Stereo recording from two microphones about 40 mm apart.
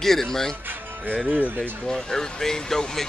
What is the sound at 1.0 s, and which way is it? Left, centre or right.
Speech, centre.